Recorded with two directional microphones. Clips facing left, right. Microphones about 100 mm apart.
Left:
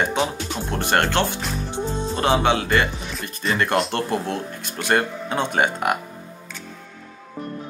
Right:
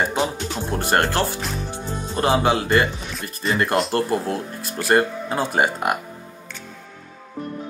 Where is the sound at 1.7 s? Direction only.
25° left (ahead or behind).